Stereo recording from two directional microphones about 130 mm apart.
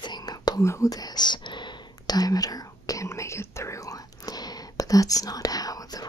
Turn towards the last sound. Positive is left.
turn(degrees=30)  # may be behind; listen again after turning